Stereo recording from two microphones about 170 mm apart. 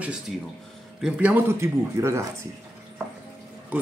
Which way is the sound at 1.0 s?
5° right (ahead or behind).